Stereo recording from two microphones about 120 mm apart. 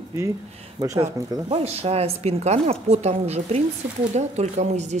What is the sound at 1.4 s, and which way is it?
A woman's voice, 60° right (ahead or behind).